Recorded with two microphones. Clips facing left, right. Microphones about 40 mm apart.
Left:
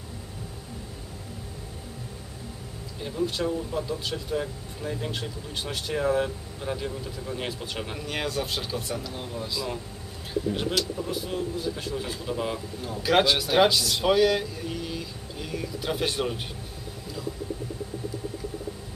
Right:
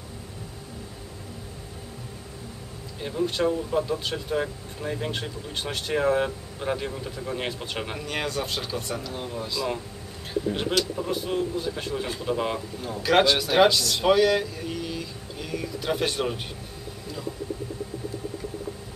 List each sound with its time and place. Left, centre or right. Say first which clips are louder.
3.0 s speech: right 3 dB; centre
8.0 s speech: left 1 dB; centre
11.0 s speech: right 3 dB; centre
12.8 s speech: right 2 dB; centre